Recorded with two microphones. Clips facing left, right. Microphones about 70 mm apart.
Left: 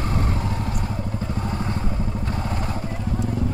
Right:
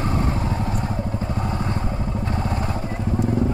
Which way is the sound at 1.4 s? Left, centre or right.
Right.